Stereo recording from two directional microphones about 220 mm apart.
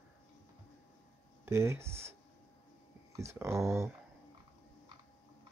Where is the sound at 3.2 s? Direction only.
15° right (ahead or behind).